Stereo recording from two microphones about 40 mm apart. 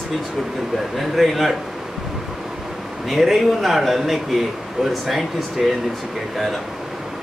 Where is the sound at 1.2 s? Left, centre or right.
Centre.